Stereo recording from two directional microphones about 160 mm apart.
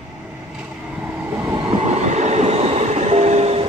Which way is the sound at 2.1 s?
45° right (ahead or behind).